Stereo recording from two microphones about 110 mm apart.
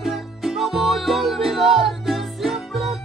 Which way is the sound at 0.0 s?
Centre (ahead or behind).